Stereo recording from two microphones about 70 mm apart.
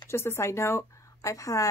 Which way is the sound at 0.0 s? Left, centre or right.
Left.